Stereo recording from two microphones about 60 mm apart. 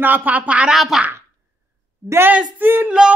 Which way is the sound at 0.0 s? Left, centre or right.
Right.